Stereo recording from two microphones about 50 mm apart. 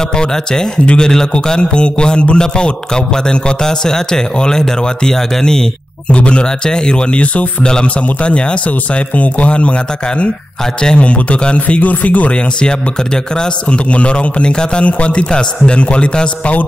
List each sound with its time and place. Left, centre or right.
0.2 s a man's voice: centre; by 12.3 s left
12.5 s a man's voice: centre